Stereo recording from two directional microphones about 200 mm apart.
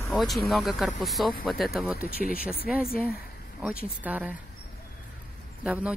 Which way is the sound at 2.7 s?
Centre (ahead or behind).